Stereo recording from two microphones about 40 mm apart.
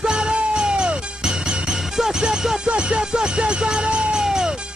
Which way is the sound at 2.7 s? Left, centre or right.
Right.